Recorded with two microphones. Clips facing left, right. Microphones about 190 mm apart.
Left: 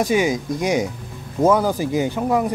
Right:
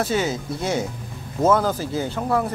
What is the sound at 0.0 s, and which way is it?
Speech, 15° left (ahead or behind).